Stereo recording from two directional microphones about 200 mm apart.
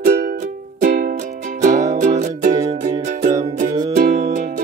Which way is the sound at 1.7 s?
15° right (ahead or behind).